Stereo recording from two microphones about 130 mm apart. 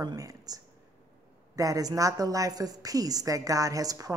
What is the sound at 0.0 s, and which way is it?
Speech, 25° right (ahead or behind).